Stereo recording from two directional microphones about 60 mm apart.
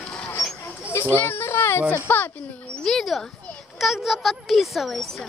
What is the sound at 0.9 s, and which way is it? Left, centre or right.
A child's voice, left.